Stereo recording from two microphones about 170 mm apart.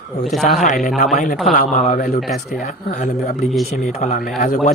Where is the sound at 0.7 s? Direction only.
55° left (ahead or behind).